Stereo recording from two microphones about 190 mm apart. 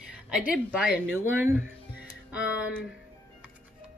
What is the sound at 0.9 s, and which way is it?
Speech, 10° right (ahead or behind).